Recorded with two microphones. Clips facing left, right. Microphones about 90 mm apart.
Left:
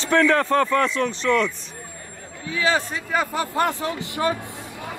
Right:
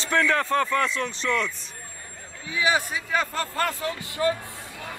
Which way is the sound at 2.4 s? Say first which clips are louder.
Left 2 dB; 15° right (ahead or behind).